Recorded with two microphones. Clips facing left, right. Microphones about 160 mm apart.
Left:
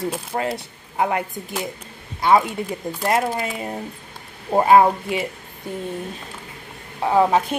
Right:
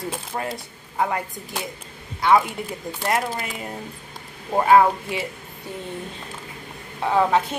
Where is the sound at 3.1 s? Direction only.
25° left (ahead or behind).